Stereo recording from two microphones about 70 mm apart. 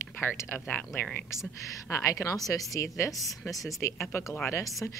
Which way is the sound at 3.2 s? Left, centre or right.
Centre.